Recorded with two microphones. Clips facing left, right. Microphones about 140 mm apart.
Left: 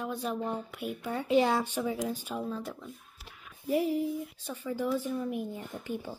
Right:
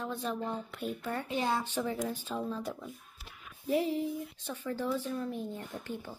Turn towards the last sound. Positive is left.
turn(degrees=15)  # may be behind; listen again after turning